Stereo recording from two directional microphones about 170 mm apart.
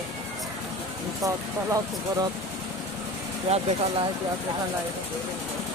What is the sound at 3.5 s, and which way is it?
Speech, 30° right (ahead or behind).